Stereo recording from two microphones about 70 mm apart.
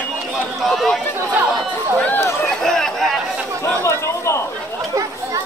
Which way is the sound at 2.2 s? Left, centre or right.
Left.